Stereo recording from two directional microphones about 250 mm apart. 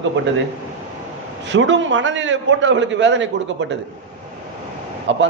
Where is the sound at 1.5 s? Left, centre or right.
Right.